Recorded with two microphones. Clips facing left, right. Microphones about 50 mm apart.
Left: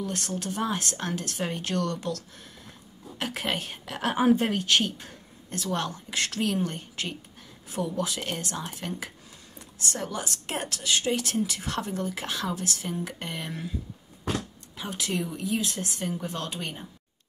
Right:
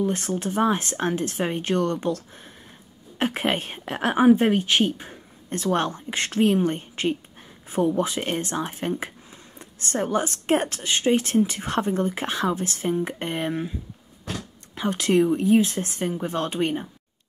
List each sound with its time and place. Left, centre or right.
0.0 s a woman's voice: right
5.5 s a woman's voice: right
14.8 s a woman's voice: right